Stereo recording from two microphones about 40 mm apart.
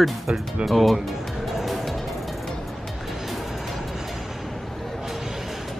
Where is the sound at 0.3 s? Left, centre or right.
Right.